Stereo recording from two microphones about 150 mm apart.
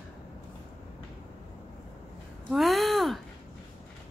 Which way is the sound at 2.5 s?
Centre (ahead or behind).